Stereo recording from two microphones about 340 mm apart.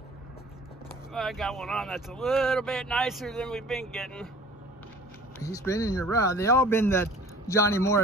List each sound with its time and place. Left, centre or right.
1.1 s speech: centre
5.4 s speech: centre